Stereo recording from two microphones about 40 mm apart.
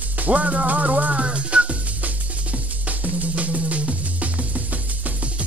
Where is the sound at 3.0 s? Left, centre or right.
Right.